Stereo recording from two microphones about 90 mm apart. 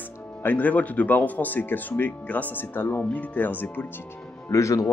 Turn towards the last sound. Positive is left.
turn(degrees=35)  # may be behind; listen again after turning